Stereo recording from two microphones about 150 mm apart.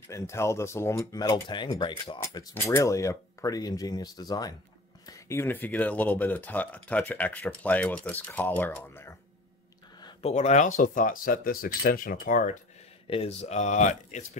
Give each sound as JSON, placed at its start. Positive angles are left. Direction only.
{"t": 0.1, "sound": "speech", "side_deg": 20}
{"t": 2.5, "sound": "speech", "side_deg": 15}
{"t": 10.2, "sound": "speech", "side_deg": 50}
{"t": 13.0, "sound": "speech", "side_deg": 40}